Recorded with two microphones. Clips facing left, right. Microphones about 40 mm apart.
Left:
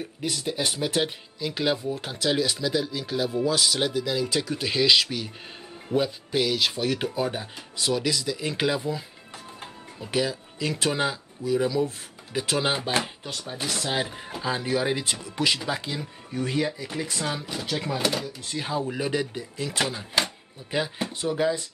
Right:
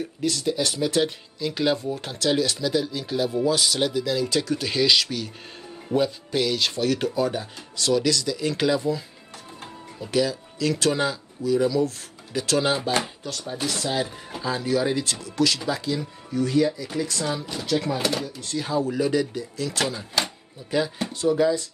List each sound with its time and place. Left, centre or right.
0.2 s speech: centre
1.4 s speech: centre
17.9 s speech: centre; by 21.6 s left